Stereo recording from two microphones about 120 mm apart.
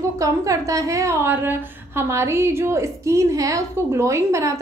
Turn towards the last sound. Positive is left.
turn(degrees=-25)  # may be behind; listen again after turning